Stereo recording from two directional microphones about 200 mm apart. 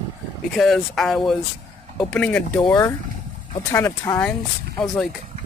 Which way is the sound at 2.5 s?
20° left (ahead or behind).